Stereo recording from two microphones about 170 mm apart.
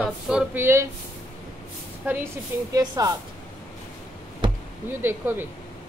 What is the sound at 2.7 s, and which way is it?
Speech, 20° right (ahead or behind).